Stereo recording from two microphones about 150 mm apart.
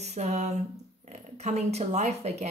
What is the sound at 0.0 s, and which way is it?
Speech, 45° right (ahead or behind).